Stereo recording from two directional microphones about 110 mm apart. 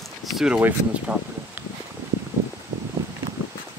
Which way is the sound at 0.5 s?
15° right (ahead or behind).